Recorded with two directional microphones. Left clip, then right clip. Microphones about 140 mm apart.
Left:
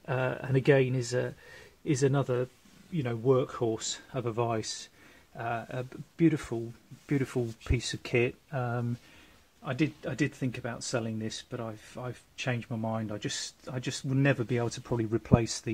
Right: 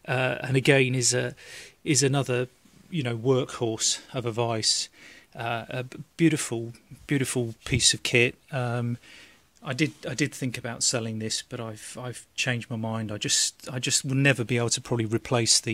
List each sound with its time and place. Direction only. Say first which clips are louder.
0.0 s speech: right 5 dB; 35° right (ahead or behind)
1.1 s speech: right 3 dB; 45° right (ahead or behind)
14.2 s speech: right 4 dB; 50° right (ahead or behind)